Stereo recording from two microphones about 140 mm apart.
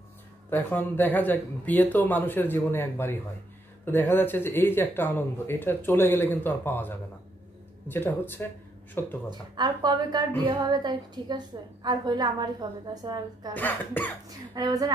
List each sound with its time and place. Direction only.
0.5 s speech: 15° left (ahead or behind)
9.3 s a woman's voice: 30° right (ahead or behind)
13.6 s speech: 10° left (ahead or behind)
14.5 s speech: 25° right (ahead or behind)